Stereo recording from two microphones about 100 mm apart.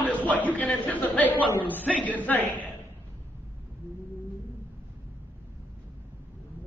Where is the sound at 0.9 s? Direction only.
15° left (ahead or behind).